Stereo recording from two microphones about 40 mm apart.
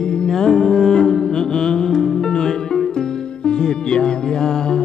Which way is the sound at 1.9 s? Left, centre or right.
Centre.